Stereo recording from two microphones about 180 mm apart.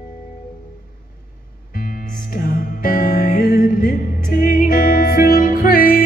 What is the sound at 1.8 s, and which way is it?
Music, 50° left (ahead or behind).